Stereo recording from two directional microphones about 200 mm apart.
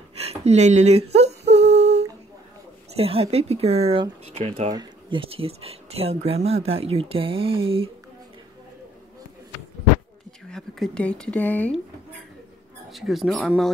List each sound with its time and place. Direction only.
0.1 s a sound: 30° right (ahead or behind)
1.5 s humming: 30° right (ahead or behind)
3.0 s speech: 30° right (ahead or behind)
10.5 s speech: centre (ahead or behind)
12.9 s speech: centre (ahead or behind)